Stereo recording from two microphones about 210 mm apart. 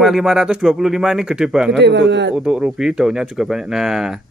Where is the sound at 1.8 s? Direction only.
55° right (ahead or behind).